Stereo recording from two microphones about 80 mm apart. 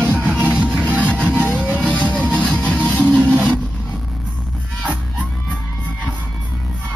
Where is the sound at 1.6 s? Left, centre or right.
Centre.